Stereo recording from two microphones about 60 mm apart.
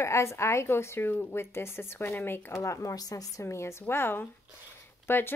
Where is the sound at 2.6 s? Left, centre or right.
Left.